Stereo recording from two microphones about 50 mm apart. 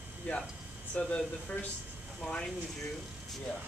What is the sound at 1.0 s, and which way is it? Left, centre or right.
Speech, centre.